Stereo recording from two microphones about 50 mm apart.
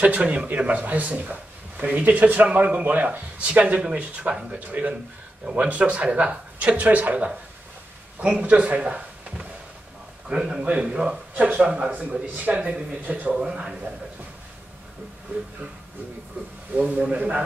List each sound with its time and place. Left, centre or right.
0.0 s speech: right
8.4 s a man's voice: right
13.3 s a man's voice: centre
16.7 s speech: right